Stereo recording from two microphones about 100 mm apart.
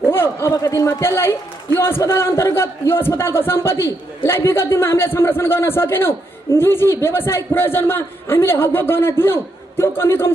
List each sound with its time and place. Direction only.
0.1 s a man's voice: 25° left (ahead or behind)